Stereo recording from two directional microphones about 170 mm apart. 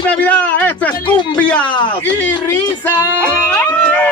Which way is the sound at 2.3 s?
25° left (ahead or behind).